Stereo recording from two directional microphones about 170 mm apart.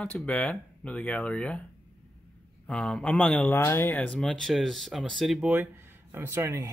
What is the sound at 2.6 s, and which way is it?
Speech, 5° left (ahead or behind).